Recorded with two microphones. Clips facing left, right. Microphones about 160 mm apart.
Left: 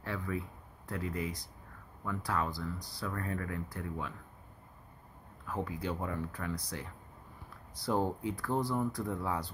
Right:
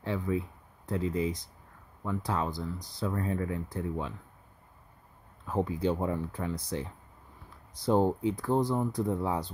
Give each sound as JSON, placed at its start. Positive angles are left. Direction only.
{"t": 0.0, "sound": "speech", "side_deg": -20}
{"t": 5.5, "sound": "speech", "side_deg": -25}